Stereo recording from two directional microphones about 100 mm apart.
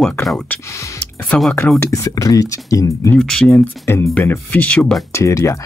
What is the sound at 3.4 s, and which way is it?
Speech, 25° left (ahead or behind).